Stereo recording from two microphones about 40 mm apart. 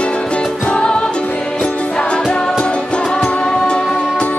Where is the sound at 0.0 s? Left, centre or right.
Left.